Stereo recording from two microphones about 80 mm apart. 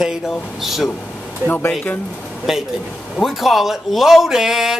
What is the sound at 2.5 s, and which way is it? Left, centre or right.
Speech, centre.